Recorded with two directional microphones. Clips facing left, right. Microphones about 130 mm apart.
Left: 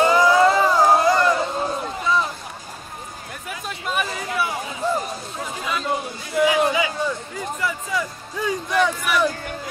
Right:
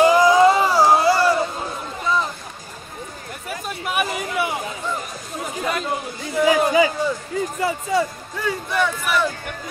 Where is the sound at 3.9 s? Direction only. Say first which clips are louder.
Right 2 dB; 15° right (ahead or behind).